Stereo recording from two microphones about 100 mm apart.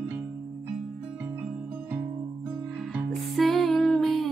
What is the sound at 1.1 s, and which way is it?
Music, 20° right (ahead or behind).